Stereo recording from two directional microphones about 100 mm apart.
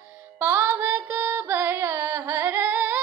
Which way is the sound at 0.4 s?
20° right (ahead or behind).